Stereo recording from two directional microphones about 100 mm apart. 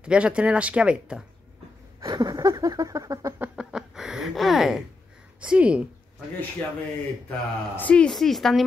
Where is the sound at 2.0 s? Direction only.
40° right (ahead or behind).